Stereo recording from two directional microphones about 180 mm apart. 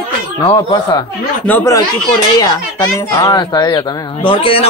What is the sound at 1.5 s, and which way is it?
Speech, 15° left (ahead or behind).